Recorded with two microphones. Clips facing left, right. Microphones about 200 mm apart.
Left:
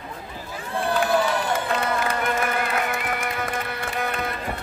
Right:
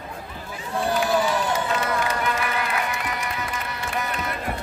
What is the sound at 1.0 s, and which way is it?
Crowd, 55° left (ahead or behind).